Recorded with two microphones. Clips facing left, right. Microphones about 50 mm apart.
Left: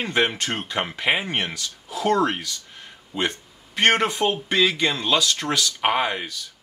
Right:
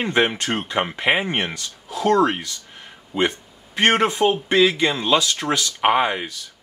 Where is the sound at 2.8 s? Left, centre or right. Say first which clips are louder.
Right 5 dB; centre.